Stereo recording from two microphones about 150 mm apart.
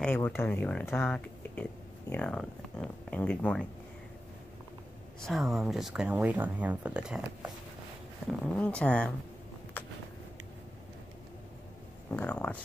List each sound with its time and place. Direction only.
0.0 s speech: 10° left (ahead or behind)
5.2 s speech: centre (ahead or behind)
8.3 s speech: 10° left (ahead or behind)
12.1 s speech: 10° left (ahead or behind)